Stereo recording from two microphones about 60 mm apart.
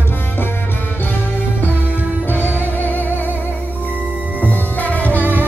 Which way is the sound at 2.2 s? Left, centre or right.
Left.